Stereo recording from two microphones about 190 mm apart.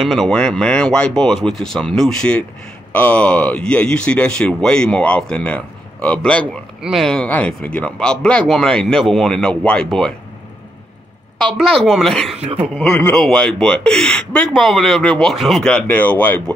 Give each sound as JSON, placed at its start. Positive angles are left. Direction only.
{"t": 0.0, "sound": "speech", "side_deg": 0}
{"t": 11.3, "sound": "speech", "side_deg": 5}
{"t": 12.4, "sound": "speech", "side_deg": -30}
{"t": 12.8, "sound": "speech", "side_deg": 10}